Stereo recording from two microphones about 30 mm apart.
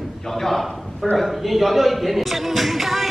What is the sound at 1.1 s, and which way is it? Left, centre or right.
Speech, centre.